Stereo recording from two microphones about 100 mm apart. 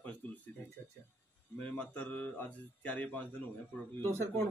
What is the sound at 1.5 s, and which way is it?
Speech, 10° left (ahead or behind).